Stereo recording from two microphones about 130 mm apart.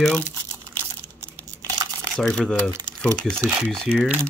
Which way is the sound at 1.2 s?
25° right (ahead or behind).